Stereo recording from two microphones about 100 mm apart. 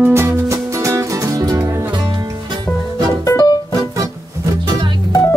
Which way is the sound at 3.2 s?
35° left (ahead or behind).